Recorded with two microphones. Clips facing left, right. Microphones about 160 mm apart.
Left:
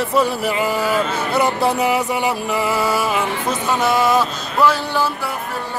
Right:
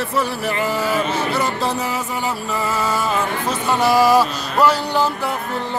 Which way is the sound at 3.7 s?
Centre (ahead or behind).